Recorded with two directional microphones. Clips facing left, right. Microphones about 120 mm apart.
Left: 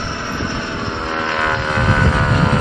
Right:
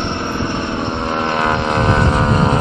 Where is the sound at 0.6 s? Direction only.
20° right (ahead or behind).